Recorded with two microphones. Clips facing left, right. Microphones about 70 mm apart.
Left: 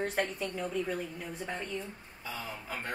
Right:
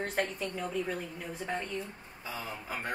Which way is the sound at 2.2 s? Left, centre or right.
Centre.